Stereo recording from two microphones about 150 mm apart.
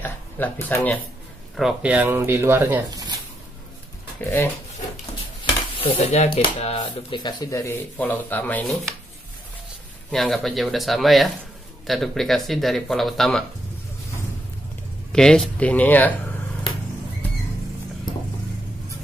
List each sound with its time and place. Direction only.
0.0 s speech: 10° left (ahead or behind)
1.6 s speech: 5° right (ahead or behind); by 3.2 s 25° right (ahead or behind)
4.2 s speech: 15° left (ahead or behind)
5.4 s speech: 35° left (ahead or behind); by 8.6 s 10° left (ahead or behind)
10.1 s speech: centre (ahead or behind)
15.1 s speech: 5° left (ahead or behind)